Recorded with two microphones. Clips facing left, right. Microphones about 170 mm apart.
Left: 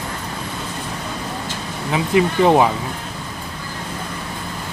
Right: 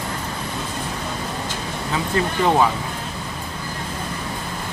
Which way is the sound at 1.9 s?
15° left (ahead or behind).